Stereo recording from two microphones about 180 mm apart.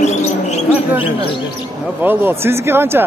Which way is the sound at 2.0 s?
10° right (ahead or behind).